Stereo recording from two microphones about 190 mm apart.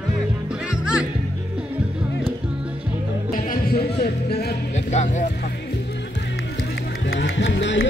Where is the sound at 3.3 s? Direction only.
50° left (ahead or behind).